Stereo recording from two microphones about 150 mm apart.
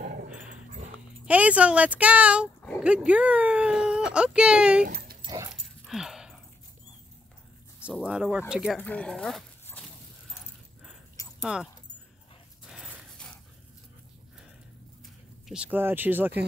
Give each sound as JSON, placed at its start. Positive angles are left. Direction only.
{"t": 0.0, "sound": "dog", "side_deg": -65}
{"t": 1.2, "sound": "speech", "side_deg": -10}
{"t": 4.8, "sound": "dog", "side_deg": -85}
{"t": 5.2, "sound": "dog", "side_deg": -25}
{"t": 5.5, "sound": "dog", "side_deg": 0}
{"t": 7.8, "sound": "speech", "side_deg": -5}
{"t": 8.7, "sound": "speech", "side_deg": 10}
{"t": 11.4, "sound": "speech", "side_deg": -5}
{"t": 12.6, "sound": "dog", "side_deg": -5}
{"t": 15.4, "sound": "speech", "side_deg": -5}